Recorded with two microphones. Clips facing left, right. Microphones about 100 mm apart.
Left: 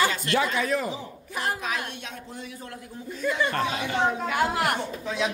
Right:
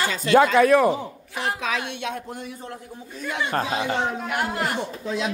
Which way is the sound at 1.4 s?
90° right.